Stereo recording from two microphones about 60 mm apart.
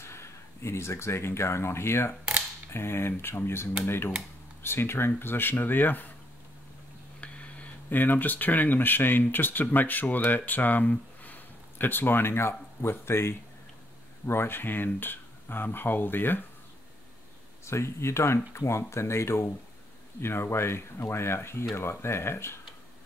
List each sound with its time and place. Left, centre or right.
0.0 s speech: left
7.2 s a sound: left
7.9 s speech: left
17.6 s speech: left